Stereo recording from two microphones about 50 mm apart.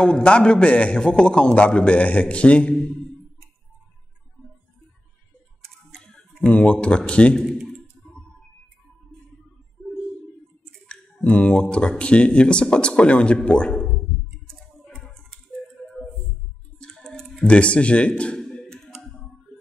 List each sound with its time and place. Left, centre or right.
0.0 s a man's voice: left
5.9 s speech: centre
10.9 s a sound: left
12.0 s a man's voice: left
14.5 s a sound: centre
17.0 s typing: centre
17.5 s a man's voice: left
18.4 s clicking: centre